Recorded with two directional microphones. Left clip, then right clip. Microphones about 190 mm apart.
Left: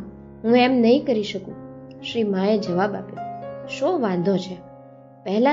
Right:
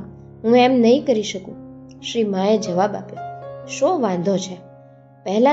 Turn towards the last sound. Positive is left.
turn(degrees=20)  # may be behind; listen again after turning